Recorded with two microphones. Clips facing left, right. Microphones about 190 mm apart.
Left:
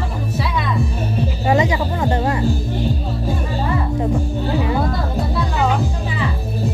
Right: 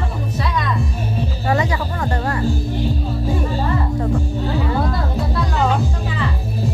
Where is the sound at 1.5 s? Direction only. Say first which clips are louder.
Left 3 dB; 20° left (ahead or behind).